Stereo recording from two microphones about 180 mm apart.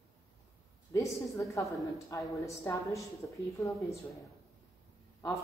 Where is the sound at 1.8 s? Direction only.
20° left (ahead or behind).